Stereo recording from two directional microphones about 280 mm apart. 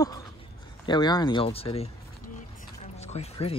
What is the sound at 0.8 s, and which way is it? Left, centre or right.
Speech, centre.